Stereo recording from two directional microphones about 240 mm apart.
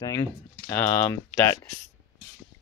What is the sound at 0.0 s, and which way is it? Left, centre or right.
Speech, centre.